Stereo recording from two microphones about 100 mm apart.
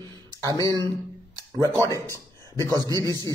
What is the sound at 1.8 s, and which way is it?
Speech, 35° right (ahead or behind).